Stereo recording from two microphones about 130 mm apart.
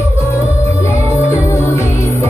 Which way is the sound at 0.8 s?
20° left (ahead or behind).